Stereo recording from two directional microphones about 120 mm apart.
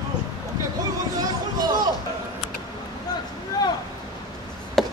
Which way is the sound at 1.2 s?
35° right (ahead or behind).